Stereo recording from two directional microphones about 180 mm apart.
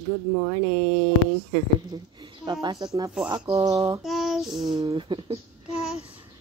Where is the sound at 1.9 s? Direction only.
25° right (ahead or behind).